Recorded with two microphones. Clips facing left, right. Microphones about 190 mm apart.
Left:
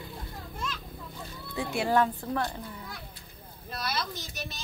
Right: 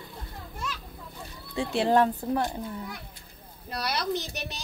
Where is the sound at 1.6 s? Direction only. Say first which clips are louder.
Right 3 dB; 30° right (ahead or behind).